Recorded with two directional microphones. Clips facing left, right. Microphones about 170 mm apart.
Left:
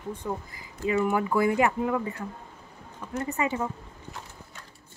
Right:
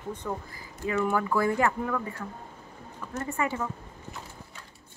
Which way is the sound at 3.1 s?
20° left (ahead or behind).